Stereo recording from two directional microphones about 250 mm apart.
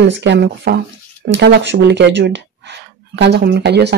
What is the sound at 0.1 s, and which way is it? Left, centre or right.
Speech, right.